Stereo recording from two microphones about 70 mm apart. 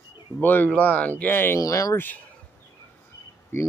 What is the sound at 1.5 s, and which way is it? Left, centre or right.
Speech, left.